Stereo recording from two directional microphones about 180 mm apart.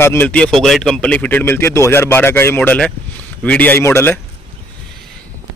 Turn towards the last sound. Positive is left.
turn(degrees=15)  # may be behind; listen again after turning